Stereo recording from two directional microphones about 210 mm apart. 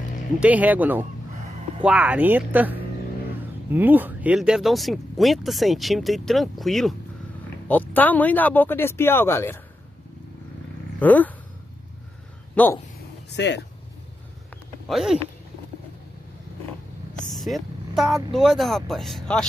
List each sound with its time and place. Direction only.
0.4 s speech: 5° right (ahead or behind); by 9.6 s 10° left (ahead or behind)
11.0 s speech: 10° left (ahead or behind)
12.6 s speech: 5° left (ahead or behind)
13.3 s speech: 55° left (ahead or behind)
14.9 s speech: centre (ahead or behind)
17.3 s speech: centre (ahead or behind)